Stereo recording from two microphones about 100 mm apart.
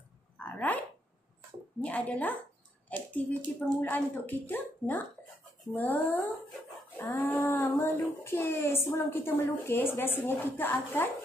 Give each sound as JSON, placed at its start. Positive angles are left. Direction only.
{"t": 0.5, "sound": "a sound", "side_deg": 15}
{"t": 1.8, "sound": "speech", "side_deg": 15}
{"t": 3.8, "sound": "child singing", "side_deg": 20}
{"t": 5.7, "sound": "speech", "side_deg": 20}
{"t": 7.2, "sound": "child singing", "side_deg": 25}